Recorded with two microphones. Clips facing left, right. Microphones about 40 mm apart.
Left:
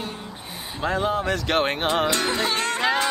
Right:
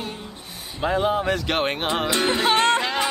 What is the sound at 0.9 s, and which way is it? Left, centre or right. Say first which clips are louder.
Music: right 2 dB; centre.